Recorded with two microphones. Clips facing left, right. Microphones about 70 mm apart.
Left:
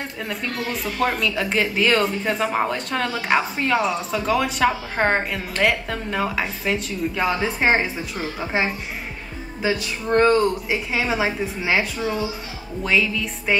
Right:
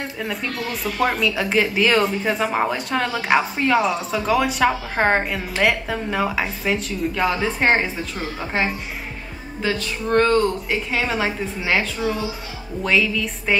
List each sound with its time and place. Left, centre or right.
0.2 s speech: centre
10.4 s speech: centre